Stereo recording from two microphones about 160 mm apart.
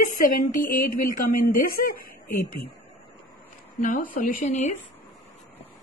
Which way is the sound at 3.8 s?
55° left (ahead or behind).